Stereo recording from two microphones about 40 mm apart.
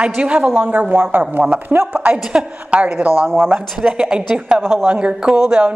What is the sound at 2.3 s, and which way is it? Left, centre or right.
Speech, right.